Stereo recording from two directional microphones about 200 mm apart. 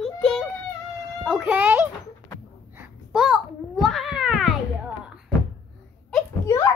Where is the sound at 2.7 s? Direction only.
5° right (ahead or behind).